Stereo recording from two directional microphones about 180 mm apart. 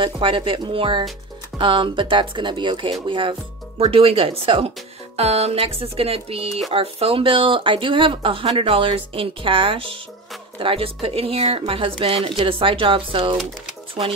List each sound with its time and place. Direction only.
0.0 s speech: 30° right (ahead or behind)